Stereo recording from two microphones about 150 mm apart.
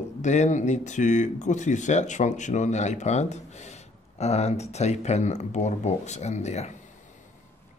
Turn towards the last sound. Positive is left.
turn(degrees=50)  # may be behind; listen again after turning